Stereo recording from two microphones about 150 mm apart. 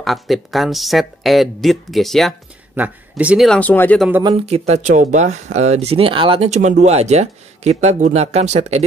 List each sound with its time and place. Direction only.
0.0 s speech: centre (ahead or behind)
2.7 s speech: 10° right (ahead or behind)
3.4 s speech: 10° left (ahead or behind)
4.5 s speech: 45° right (ahead or behind)
6.5 s speech: 55° right (ahead or behind)